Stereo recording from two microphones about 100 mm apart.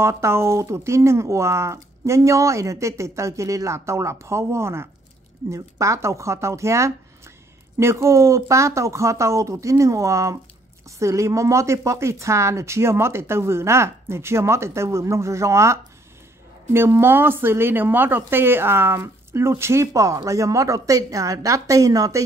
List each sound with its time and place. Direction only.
0.0 s speech: 30° right (ahead or behind)